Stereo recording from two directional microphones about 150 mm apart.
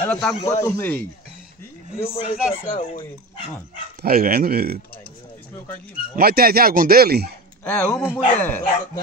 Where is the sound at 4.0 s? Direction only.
90° right.